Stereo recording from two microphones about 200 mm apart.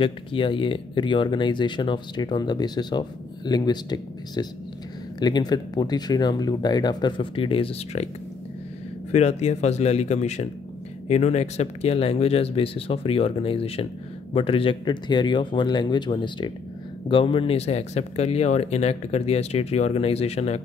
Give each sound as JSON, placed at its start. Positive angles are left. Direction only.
{"t": 0.0, "sound": "speech", "side_deg": 25}
{"t": 9.1, "sound": "speech", "side_deg": 35}